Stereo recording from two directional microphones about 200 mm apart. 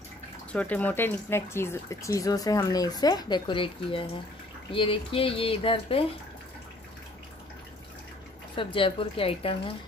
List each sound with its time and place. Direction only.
0.5 s speech: 5° left (ahead or behind); by 6.0 s 25° left (ahead or behind)
8.5 s speech: 25° left (ahead or behind)